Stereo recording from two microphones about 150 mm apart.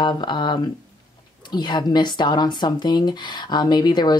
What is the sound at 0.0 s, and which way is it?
Speech, 30° left (ahead or behind).